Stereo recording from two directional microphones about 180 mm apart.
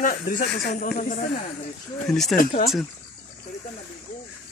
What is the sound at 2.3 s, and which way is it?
Speech, 45° left (ahead or behind).